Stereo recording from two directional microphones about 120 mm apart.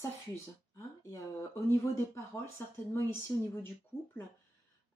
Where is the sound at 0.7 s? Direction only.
25° left (ahead or behind).